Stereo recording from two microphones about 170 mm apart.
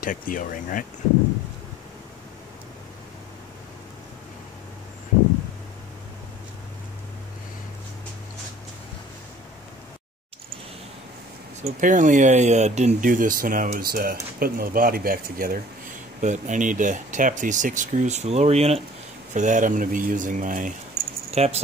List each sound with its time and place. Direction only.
0.0 s speech: 55° left (ahead or behind)
11.6 s speech: 45° right (ahead or behind)
16.2 s speech: 45° right (ahead or behind)
21.3 s speech: 40° right (ahead or behind)